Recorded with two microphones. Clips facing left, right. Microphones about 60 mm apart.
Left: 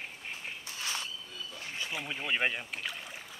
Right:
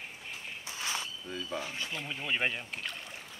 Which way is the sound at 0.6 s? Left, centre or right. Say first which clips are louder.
Right 3 dB; right.